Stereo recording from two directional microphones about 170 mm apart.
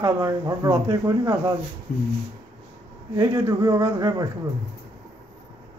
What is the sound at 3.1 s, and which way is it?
Speech, 20° right (ahead or behind).